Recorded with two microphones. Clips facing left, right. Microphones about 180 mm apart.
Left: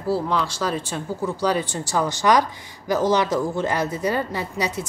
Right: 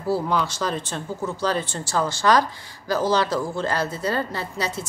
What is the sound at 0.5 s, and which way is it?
Speech, 10° left (ahead or behind).